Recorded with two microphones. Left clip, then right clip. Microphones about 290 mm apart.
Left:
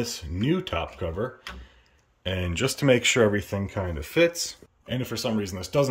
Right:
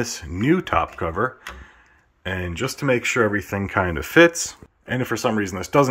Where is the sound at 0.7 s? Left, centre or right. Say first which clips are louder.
Right 8 dB; centre.